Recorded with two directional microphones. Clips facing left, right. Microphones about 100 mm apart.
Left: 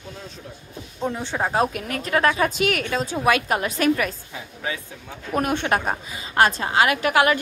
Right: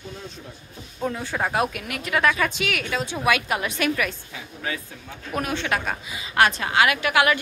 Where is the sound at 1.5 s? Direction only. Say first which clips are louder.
Left 2 dB; 35° left (ahead or behind).